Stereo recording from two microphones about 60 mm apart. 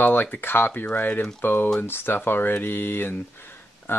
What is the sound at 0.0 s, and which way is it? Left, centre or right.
Speech, left.